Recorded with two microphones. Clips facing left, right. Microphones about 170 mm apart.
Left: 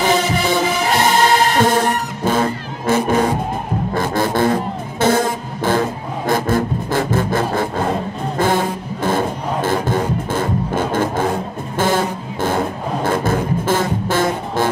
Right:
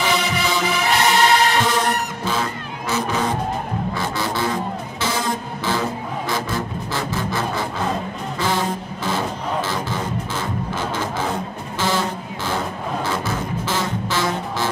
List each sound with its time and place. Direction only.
0.0 s music: 50° left (ahead or behind)
2.2 s vehicle: 50° left (ahead or behind)
3.9 s music: 50° left (ahead or behind)